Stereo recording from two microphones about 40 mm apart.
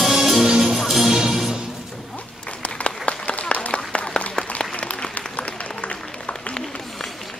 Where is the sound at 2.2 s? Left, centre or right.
Left.